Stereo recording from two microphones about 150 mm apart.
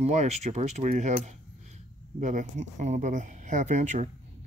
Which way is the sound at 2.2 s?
55° right (ahead or behind).